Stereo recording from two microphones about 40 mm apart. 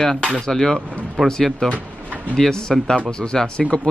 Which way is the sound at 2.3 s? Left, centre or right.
Centre.